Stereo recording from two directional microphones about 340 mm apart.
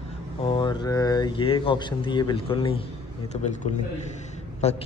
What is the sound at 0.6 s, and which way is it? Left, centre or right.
Speech, centre.